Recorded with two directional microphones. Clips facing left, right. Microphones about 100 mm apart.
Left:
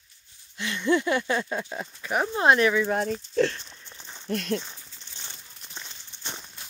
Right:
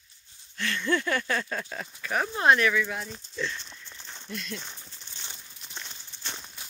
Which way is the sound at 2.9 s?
60° left (ahead or behind).